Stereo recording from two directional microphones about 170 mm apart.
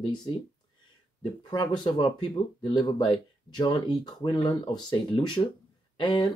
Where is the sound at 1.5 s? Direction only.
25° left (ahead or behind).